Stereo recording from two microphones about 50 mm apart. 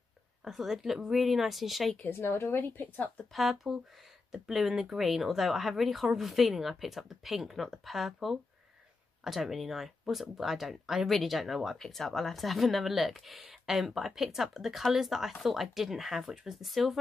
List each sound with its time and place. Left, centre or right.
0.4 s speech: centre
2.0 s speech: left
3.3 s speech: centre